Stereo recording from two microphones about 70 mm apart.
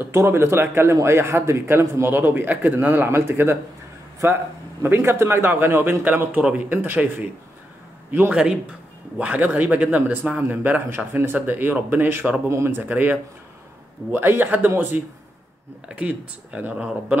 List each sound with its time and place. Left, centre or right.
0.0 s speech: right
12.4 s speech: right
12.8 s speech: right